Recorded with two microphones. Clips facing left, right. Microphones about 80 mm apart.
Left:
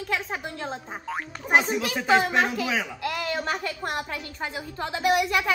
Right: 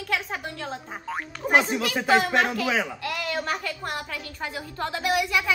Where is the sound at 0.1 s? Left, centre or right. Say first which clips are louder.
Right 1 dB; left.